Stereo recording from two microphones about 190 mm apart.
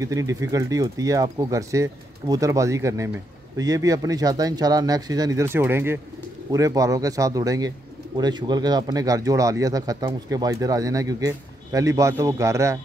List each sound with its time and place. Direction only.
0.0 s speech: 15° right (ahead or behind)